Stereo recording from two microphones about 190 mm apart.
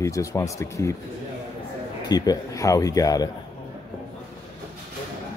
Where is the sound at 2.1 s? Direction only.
20° left (ahead or behind).